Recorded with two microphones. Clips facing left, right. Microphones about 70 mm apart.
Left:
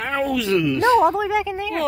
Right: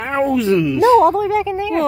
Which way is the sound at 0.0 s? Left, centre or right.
Right.